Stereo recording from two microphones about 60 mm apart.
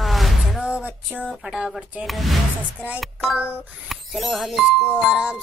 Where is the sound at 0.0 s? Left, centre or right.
Centre.